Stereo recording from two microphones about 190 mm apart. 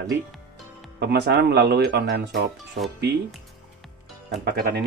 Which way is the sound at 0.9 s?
60° right (ahead or behind).